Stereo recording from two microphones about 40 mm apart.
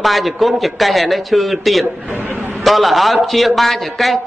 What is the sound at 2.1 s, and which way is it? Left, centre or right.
Speech, right.